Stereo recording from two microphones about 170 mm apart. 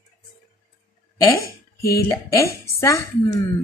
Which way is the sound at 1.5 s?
65° left (ahead or behind).